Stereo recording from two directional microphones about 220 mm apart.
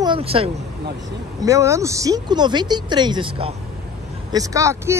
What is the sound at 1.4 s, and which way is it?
Speech, 15° right (ahead or behind).